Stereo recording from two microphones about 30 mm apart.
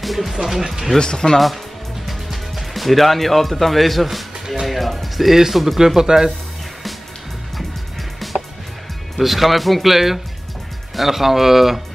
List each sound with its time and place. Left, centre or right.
0.0 s speech: centre
0.9 s speech: left
2.0 s music: centre
5.5 s speech: centre
5.9 s speech: centre
8.2 s music: centre
9.2 s speech: centre